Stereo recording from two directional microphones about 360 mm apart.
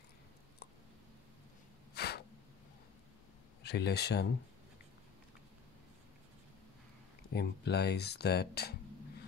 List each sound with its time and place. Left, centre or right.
2.0 s a sound: left
3.6 s speech: left
7.3 s speech: left